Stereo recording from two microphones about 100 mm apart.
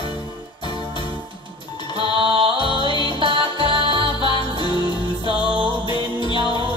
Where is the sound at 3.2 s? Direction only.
55° right (ahead or behind).